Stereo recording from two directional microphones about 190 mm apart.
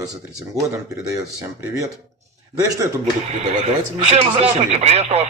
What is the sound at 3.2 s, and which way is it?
Speech, 35° right (ahead or behind).